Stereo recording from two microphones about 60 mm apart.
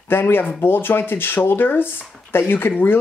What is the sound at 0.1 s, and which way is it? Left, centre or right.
Speech, left.